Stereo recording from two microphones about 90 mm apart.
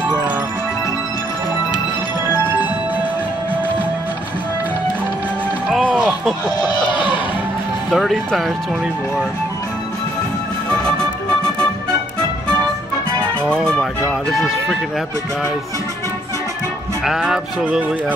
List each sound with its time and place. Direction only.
5.7 s music: 5° left (ahead or behind)
6.7 s a sound: 60° left (ahead or behind)
7.9 s speech: 5° left (ahead or behind)
10.7 s music: 10° left (ahead or behind)
13.5 s speech: 10° left (ahead or behind)
14.0 s speech: centre (ahead or behind)
17.0 s speech: 5° right (ahead or behind)